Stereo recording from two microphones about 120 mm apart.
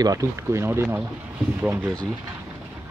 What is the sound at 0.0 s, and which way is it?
Speech, 30° right (ahead or behind).